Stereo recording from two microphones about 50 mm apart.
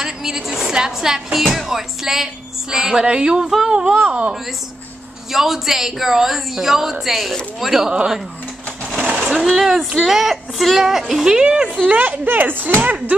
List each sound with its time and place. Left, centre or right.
0.0 s music: centre
1.4 s a woman's voice: centre
3.4 s speech: centre
3.7 s speech: centre
5.3 s a woman's voice: centre
8.9 s sewing machine: right
9.4 s a woman's voice: centre
11.2 s speech: centre
11.8 s speech: right
12.3 s speech: right